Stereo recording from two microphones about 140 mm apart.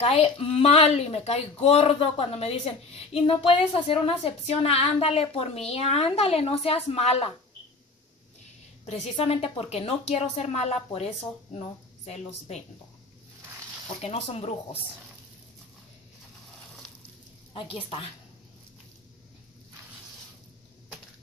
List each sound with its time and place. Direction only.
0.0 s speech: 45° left (ahead or behind)
9.1 s speech: 45° left (ahead or behind)
14.0 s speech: 45° left (ahead or behind)
17.6 s a woman's voice: 40° left (ahead or behind)